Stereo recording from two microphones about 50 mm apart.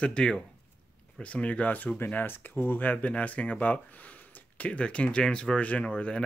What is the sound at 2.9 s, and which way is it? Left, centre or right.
Speech, left.